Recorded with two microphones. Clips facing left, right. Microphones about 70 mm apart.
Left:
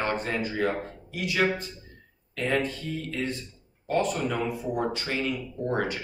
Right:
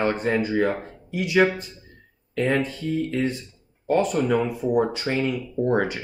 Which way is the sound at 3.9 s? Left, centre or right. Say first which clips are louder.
Right 6 dB; centre.